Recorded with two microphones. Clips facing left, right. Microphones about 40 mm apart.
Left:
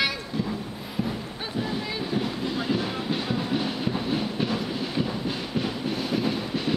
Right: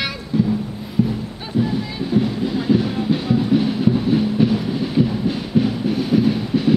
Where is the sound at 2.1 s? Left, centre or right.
Centre.